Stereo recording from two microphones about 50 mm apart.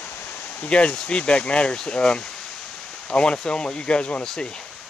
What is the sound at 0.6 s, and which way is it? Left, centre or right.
Speech, left.